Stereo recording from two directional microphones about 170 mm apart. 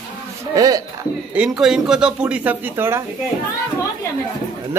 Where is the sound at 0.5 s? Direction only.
20° right (ahead or behind).